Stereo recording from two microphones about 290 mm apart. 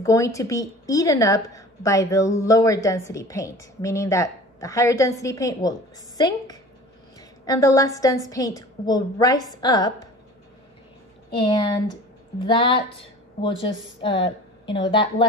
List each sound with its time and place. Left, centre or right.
0.0 s a woman's voice: centre
7.2 s a sound: centre
8.3 s a woman's voice: centre
11.3 s a woman's voice: centre